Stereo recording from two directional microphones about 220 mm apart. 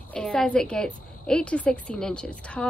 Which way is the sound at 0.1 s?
5° left (ahead or behind).